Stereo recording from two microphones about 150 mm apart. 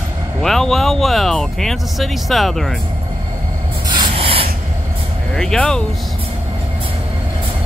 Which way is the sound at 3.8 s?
30° right (ahead or behind).